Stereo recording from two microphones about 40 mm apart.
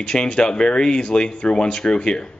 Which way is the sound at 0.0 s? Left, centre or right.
Left.